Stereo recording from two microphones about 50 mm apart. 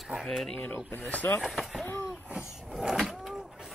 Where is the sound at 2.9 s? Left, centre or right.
Centre.